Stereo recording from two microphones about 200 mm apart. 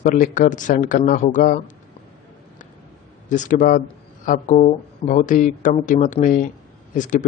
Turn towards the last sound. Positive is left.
turn(degrees=40)  # may be behind; listen again after turning